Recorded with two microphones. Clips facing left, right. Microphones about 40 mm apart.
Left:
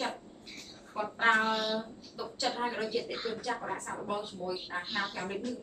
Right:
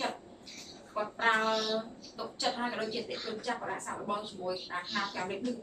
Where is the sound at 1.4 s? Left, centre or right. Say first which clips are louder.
Even; left.